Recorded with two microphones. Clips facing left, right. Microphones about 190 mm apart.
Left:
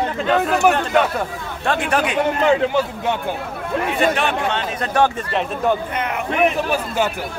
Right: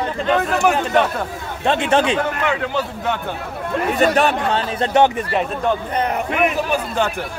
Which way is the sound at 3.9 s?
40° right (ahead or behind).